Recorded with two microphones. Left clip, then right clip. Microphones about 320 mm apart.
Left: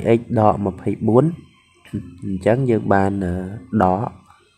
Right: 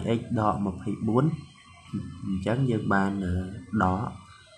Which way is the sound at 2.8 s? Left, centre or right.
Left.